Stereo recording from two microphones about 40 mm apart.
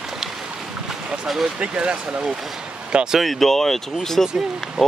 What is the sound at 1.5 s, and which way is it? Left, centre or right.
Speech, right.